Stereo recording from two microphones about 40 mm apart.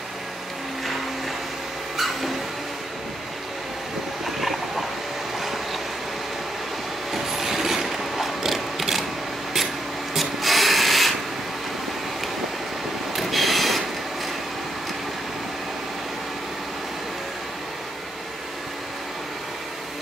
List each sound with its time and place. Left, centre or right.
2.0 s a sound: centre
4.4 s a sound: centre
5.4 s train: centre
7.1 s mechanisms: centre
10.1 s rub: centre
13.1 s train: centre